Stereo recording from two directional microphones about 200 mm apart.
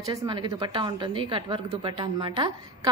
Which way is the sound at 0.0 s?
15° right (ahead or behind).